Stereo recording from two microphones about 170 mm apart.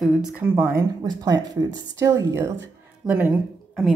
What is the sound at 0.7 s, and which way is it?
Speech, 20° right (ahead or behind).